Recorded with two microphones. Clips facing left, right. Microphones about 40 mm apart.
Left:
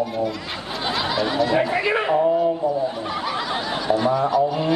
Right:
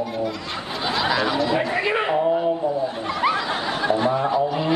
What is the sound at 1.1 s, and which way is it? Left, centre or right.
Speech, centre.